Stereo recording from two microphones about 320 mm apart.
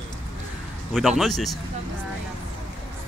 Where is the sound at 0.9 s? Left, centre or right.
Centre.